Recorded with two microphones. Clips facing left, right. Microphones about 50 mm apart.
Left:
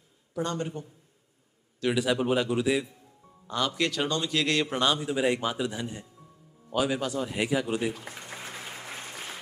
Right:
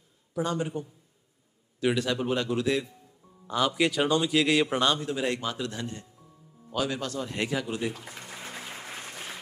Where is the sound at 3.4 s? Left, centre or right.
Centre.